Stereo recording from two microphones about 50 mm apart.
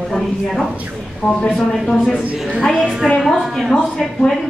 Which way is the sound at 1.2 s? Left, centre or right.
Left.